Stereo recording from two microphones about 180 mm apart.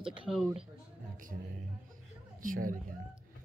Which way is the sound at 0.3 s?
5° right (ahead or behind).